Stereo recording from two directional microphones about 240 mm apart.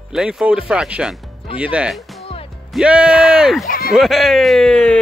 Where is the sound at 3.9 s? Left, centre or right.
Centre.